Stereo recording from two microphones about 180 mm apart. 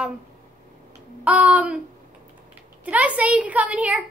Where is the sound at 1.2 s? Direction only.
5° right (ahead or behind).